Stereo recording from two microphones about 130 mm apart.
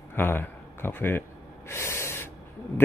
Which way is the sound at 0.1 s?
15° left (ahead or behind).